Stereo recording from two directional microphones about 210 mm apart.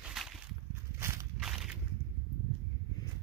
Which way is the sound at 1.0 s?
10° right (ahead or behind).